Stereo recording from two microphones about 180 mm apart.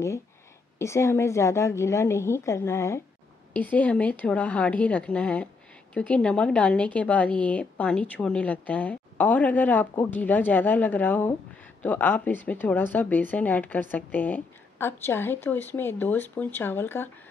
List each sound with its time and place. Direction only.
0.7 s a woman's voice: 15° left (ahead or behind)